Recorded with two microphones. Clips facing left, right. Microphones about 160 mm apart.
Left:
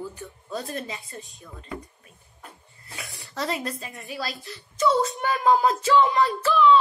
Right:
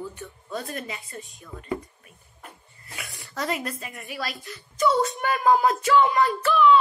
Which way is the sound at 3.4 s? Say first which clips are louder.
Even; 30° left (ahead or behind).